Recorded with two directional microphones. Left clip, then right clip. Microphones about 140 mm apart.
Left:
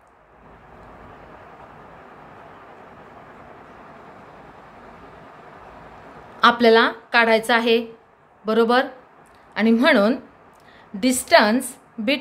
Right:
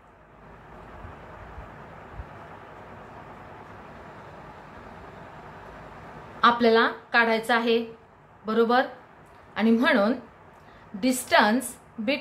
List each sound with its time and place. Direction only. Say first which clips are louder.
6.4 s a woman's voice: left 5 dB; 50° left (ahead or behind)